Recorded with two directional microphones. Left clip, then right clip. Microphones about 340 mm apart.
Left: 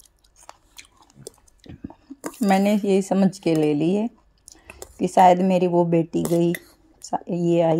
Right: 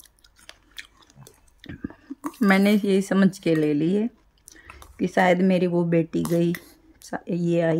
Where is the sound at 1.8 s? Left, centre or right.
Right.